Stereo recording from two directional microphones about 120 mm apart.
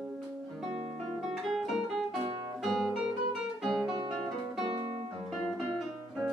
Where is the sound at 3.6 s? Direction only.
Centre (ahead or behind).